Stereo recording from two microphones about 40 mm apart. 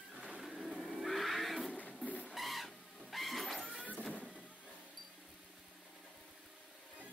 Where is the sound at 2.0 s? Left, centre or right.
Left.